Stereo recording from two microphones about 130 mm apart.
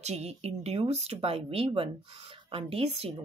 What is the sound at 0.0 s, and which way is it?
Speech, 55° right (ahead or behind).